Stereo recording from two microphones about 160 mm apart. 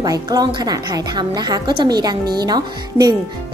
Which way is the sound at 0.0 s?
25° right (ahead or behind).